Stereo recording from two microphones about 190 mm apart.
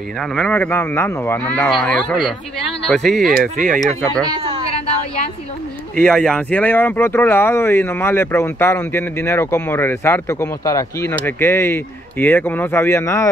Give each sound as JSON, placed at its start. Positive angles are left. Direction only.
{"t": 0.2, "sound": "speech", "side_deg": 5}
{"t": 4.3, "sound": "a sound", "side_deg": -25}
{"t": 5.9, "sound": "speech", "side_deg": 5}